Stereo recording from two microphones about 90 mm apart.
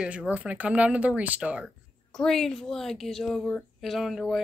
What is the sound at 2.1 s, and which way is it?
Speech, 5° left (ahead or behind).